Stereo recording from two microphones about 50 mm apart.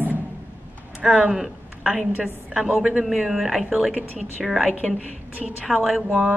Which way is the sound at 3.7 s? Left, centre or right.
Centre.